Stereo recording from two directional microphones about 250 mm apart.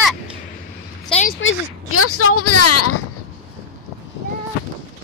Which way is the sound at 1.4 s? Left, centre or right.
Left.